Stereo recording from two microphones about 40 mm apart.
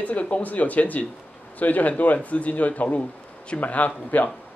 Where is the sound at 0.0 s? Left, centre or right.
Left.